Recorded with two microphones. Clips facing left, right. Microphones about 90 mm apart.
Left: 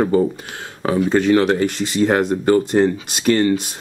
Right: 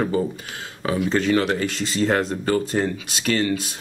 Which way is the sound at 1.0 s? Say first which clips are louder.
Left 5 dB; 10° left (ahead or behind).